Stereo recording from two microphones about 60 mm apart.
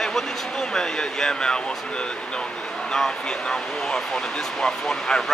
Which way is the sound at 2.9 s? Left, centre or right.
Centre.